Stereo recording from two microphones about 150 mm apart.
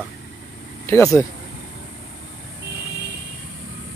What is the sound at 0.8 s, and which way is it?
Speech, 20° left (ahead or behind).